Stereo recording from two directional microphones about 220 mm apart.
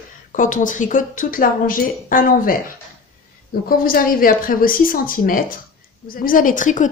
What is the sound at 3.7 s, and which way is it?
A woman's voice, 40° left (ahead or behind).